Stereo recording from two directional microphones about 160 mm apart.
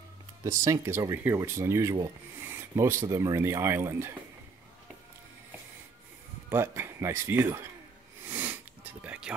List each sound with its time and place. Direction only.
0.4 s speech: 20° right (ahead or behind)
6.5 s speech: 15° right (ahead or behind)
8.3 s sniff: 10° right (ahead or behind)
9.0 s music: 10° right (ahead or behind)